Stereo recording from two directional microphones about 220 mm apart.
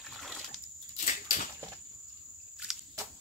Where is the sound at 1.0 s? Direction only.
35° left (ahead or behind).